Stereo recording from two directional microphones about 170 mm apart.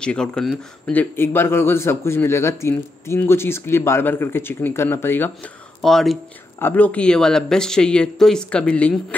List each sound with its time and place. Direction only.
0.0 s speech: 5° left (ahead or behind)